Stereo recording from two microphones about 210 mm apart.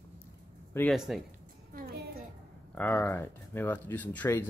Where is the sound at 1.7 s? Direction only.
45° right (ahead or behind).